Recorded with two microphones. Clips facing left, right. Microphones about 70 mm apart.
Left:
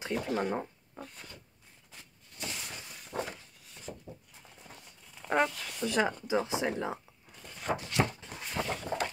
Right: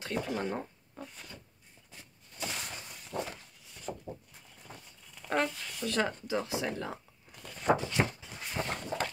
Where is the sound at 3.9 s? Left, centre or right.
Right.